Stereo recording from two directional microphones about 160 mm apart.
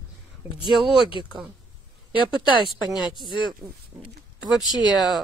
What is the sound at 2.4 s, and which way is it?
Speech, 30° right (ahead or behind).